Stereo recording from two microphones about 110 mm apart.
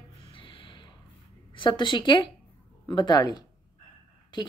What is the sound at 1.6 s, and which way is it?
A woman's voice, 45° left (ahead or behind).